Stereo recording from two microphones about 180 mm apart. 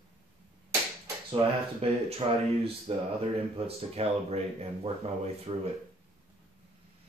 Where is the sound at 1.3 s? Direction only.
30° right (ahead or behind).